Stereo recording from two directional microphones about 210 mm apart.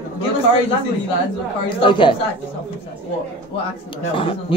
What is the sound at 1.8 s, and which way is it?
Speech, 25° left (ahead or behind).